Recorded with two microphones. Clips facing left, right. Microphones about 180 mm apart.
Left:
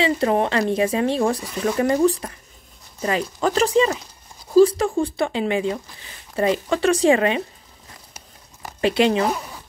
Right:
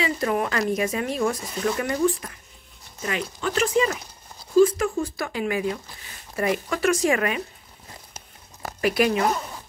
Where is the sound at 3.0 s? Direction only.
35° left (ahead or behind).